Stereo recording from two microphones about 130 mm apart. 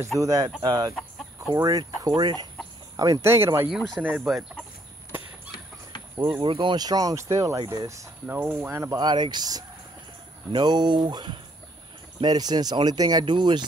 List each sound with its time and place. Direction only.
0.2 s speech: 30° right (ahead or behind)
3.6 s speech: centre (ahead or behind)
4.0 s speech: 10° right (ahead or behind)
6.1 s speech: 35° right (ahead or behind)
8.3 s speech: 15° right (ahead or behind)
9.0 s speech: 35° right (ahead or behind)